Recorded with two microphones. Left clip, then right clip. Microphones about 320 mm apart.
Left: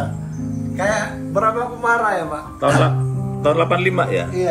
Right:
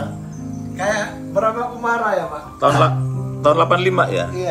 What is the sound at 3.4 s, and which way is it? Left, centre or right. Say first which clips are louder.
Speech: right 2 dB; centre.